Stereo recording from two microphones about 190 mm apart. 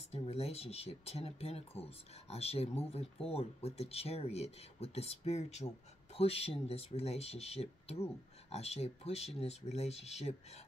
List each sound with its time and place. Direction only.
0.1 s speech: 35° left (ahead or behind)